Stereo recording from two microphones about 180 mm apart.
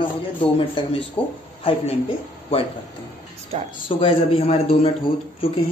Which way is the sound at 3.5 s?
30° right (ahead or behind).